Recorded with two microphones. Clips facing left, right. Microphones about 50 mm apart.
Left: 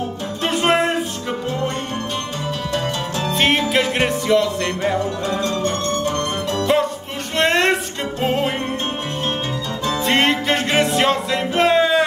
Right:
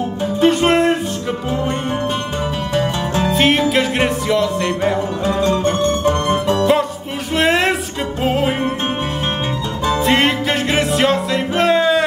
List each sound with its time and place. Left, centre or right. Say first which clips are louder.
0.4 s music: right 4 dB; centre
2.7 s music: right 5 dB; right
3.3 s music: right 3 dB; centre
5.2 s music: right 5 dB; right
7.3 s music: right 1 dB; centre
10.0 s music: even; centre